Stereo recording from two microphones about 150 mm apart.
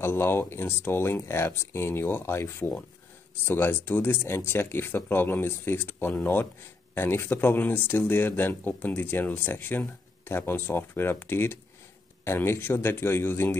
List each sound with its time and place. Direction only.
0.0 s speech: 15° left (ahead or behind)